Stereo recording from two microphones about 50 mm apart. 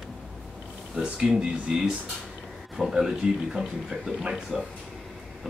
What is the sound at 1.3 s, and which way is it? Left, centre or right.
Speech, centre.